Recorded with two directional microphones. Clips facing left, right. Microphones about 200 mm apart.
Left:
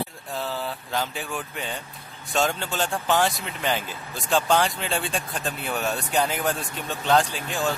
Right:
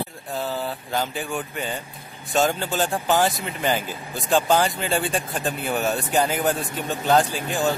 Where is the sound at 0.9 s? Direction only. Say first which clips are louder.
Right 3 dB; centre (ahead or behind).